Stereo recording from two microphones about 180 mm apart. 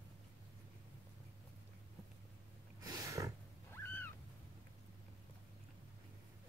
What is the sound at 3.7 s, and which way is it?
Cat, 10° left (ahead or behind).